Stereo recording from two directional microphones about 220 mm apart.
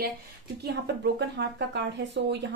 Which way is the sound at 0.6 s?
50° right (ahead or behind).